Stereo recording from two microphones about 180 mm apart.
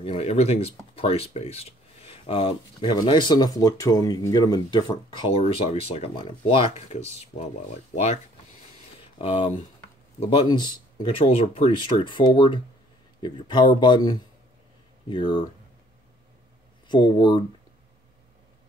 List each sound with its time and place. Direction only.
0.0 s speech: 35° left (ahead or behind)
7.9 s speech: 40° left (ahead or behind)
9.2 s speech: 30° left (ahead or behind)
16.8 s speech: 25° left (ahead or behind)